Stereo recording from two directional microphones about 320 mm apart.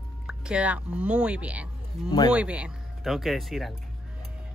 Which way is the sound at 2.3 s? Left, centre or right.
Centre.